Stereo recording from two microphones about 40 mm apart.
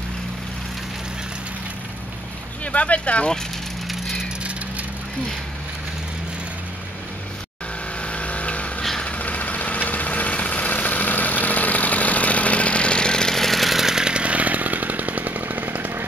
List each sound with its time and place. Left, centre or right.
2.6 s speech: left
3.8 s vehicle: centre
8.0 s a sound: left
9.0 s vehicle: left; by 14.0 s centre
14.0 s chainsaw: right